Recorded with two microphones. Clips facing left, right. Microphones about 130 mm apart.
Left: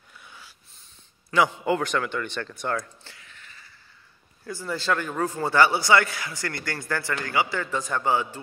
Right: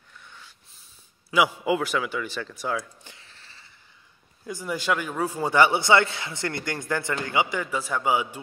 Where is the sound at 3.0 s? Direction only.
30° right (ahead or behind).